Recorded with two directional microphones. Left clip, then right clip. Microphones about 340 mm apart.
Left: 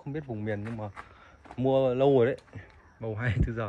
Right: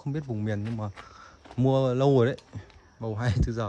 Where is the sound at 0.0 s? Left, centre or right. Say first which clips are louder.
Right 2 dB; right.